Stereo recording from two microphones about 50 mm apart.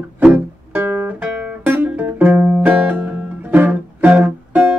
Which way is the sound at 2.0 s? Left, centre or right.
Right.